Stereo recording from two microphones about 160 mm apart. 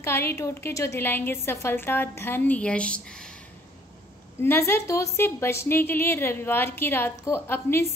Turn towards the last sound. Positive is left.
turn(degrees=15)  # may be behind; listen again after turning